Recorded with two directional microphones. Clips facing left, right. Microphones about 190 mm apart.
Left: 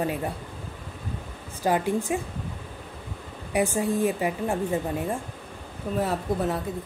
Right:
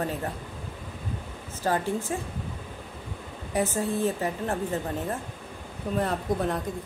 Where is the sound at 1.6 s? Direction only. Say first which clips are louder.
Left 3 dB; 15° left (ahead or behind).